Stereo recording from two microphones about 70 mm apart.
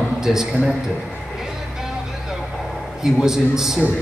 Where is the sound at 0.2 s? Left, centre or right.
Centre.